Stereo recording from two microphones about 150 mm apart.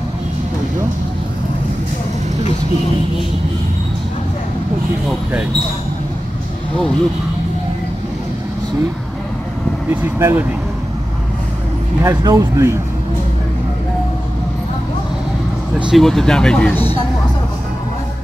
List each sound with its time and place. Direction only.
9.8 s speech: 15° right (ahead or behind)
12.0 s speech: 25° right (ahead or behind)
15.9 s speech: centre (ahead or behind)